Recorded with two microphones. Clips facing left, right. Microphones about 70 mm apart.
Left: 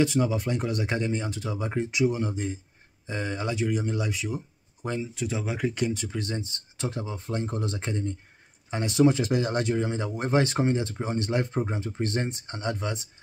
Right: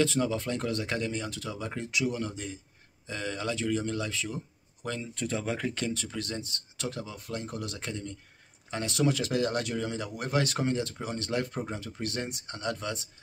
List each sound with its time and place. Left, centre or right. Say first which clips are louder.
0.0 s speech: left 3 dB; centre
5.0 s speech: left 1 dB; centre